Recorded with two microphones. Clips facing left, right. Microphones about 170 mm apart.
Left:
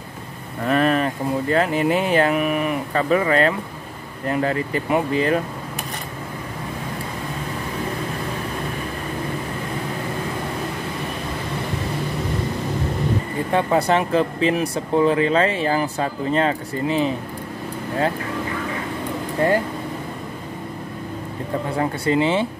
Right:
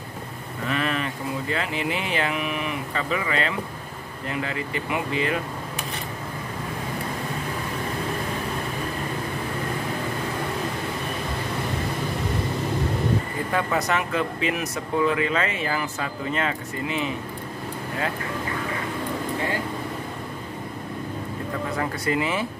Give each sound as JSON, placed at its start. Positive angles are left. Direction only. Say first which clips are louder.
{"t": 0.7, "sound": "speech", "louder": "left 8 dB", "side_deg": 45}
{"t": 13.5, "sound": "speech", "louder": "left 6 dB", "side_deg": 30}
{"t": 21.7, "sound": "speech", "louder": "left 6 dB", "side_deg": 30}